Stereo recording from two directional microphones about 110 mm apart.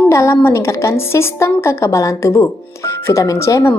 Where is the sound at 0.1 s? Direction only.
25° left (ahead or behind).